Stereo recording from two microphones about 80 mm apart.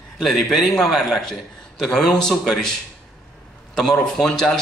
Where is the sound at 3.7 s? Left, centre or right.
Centre.